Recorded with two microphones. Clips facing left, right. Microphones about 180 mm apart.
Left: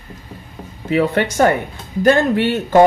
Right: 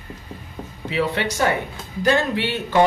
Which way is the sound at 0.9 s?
50° left (ahead or behind).